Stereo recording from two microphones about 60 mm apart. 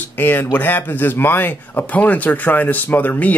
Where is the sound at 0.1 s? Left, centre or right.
Left.